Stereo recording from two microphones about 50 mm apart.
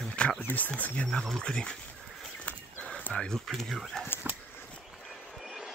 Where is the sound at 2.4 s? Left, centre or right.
Left.